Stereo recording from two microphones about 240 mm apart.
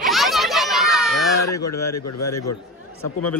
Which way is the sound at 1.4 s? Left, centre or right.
Left.